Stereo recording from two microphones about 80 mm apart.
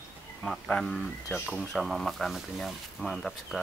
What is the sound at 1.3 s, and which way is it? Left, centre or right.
Speech, centre.